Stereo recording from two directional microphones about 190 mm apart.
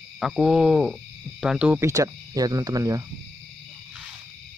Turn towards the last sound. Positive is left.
turn(degrees=-20)  # may be behind; listen again after turning